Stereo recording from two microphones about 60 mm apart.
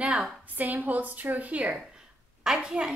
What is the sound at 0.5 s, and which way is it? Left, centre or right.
A woman's voice, right.